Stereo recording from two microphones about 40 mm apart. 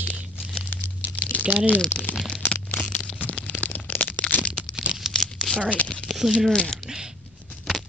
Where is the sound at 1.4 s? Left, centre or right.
Right.